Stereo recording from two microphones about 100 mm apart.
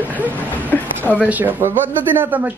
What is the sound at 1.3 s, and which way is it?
A man's voice, 20° right (ahead or behind).